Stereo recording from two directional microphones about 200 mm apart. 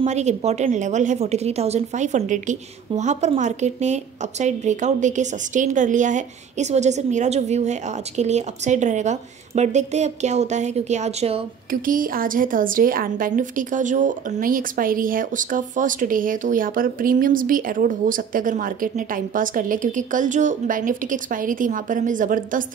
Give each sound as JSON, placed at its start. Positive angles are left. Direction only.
{"t": 0.0, "sound": "a woman's voice", "side_deg": -35}
{"t": 11.8, "sound": "a woman's voice", "side_deg": -45}